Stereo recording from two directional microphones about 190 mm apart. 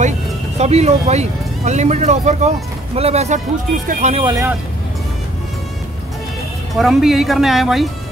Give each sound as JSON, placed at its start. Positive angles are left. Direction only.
{"t": 0.6, "sound": "speech", "side_deg": -35}
{"t": 4.2, "sound": "speech", "side_deg": -20}
{"t": 6.7, "sound": "speech", "side_deg": 0}